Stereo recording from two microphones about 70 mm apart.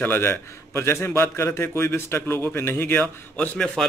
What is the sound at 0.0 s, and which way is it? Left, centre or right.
A man's voice, left.